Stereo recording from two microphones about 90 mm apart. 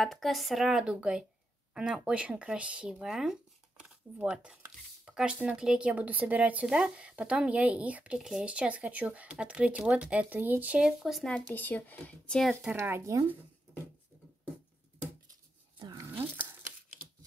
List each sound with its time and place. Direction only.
0.0 s a woman's voice: centre (ahead or behind)
11.4 s speech: 20° left (ahead or behind)
12.7 s speech: 30° right (ahead or behind)
16.1 s a sound: 20° right (ahead or behind)